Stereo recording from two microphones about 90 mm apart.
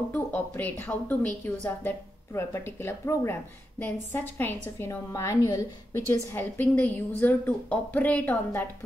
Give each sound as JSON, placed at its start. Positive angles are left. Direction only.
{"t": 0.1, "sound": "a woman's voice", "side_deg": 20}
{"t": 6.3, "sound": "a woman's voice", "side_deg": 20}